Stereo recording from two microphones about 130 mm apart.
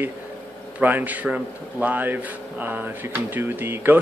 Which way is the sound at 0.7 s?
15° right (ahead or behind).